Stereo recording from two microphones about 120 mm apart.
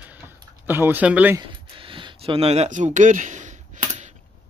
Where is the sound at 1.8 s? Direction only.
45° right (ahead or behind); by 4.1 s 90° right.